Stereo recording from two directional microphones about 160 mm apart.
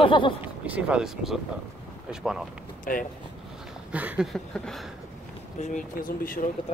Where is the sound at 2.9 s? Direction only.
60° left (ahead or behind).